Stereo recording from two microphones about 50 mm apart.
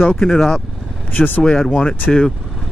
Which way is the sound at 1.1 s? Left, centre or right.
Left.